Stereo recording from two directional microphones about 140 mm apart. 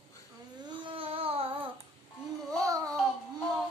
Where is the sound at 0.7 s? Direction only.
35° right (ahead or behind).